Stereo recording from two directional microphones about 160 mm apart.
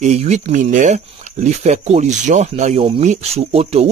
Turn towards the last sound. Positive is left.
turn(degrees=-40)  # may be behind; listen again after turning